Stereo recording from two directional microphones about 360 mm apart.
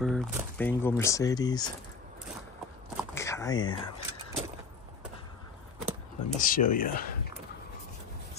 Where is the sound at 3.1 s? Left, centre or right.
Centre.